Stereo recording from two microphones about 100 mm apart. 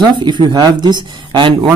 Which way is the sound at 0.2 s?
50° right (ahead or behind).